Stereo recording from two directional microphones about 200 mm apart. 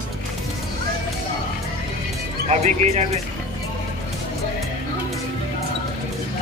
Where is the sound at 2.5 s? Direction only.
35° right (ahead or behind).